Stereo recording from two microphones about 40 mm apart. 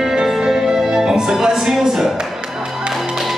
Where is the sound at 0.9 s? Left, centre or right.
Centre.